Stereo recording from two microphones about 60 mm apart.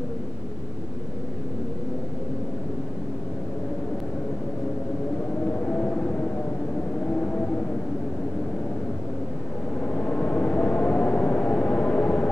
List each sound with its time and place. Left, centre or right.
5.6 s whale vocalization: left
9.8 s vehicle: left